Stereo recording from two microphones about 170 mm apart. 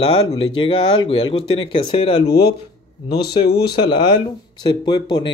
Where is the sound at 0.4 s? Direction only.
30° left (ahead or behind).